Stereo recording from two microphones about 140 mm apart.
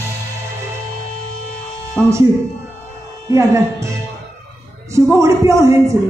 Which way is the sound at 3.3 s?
20° right (ahead or behind).